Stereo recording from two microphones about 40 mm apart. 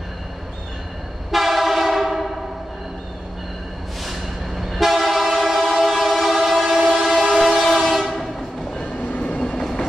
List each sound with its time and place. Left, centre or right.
1.3 s train: centre
4.0 s train: centre
8.6 s train: left
9.6 s train: centre